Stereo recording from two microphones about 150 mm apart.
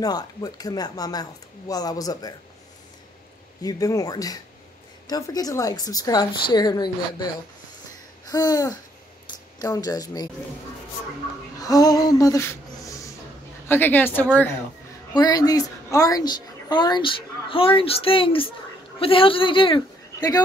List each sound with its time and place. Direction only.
0.0 s a woman's voice: 25° left (ahead or behind)
3.6 s a woman's voice: 25° left (ahead or behind)
8.3 s a woman's voice: 25° left (ahead or behind)
11.6 s a sound: 25° left (ahead or behind)
13.7 s a woman's voice: 10° left (ahead or behind)
15.1 s a woman's voice: 25° left (ahead or behind)